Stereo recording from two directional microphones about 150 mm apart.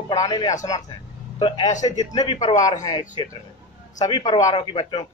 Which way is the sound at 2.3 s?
55° left (ahead or behind).